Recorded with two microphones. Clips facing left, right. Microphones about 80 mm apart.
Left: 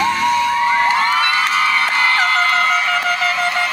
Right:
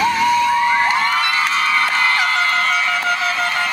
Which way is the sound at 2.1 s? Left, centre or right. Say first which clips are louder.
Left 2 dB; left.